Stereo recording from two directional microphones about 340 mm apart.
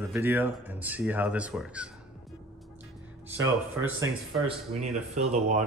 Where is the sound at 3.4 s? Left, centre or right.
Centre.